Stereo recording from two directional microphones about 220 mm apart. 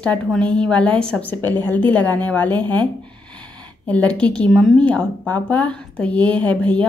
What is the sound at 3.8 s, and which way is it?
A woman's voice, 5° left (ahead or behind).